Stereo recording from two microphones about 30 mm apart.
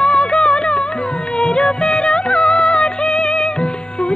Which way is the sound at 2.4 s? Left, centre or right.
Left.